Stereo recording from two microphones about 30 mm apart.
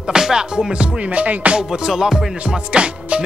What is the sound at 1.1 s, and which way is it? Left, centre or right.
Music, right.